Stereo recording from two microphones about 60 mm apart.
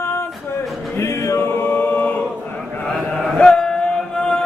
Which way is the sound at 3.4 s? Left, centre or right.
Centre.